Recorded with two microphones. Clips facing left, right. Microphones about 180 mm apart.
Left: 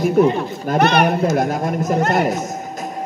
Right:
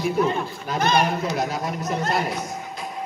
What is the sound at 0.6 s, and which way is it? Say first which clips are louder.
Speech: left 6 dB; 65° left (ahead or behind).